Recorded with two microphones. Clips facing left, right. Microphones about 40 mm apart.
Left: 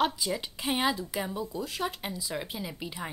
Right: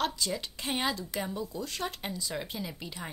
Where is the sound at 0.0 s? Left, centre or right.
Centre.